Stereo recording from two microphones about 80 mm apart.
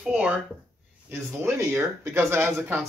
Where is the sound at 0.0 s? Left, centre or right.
Centre.